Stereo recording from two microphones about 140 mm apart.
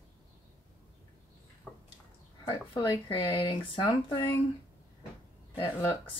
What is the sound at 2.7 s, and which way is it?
Speech, 30° left (ahead or behind).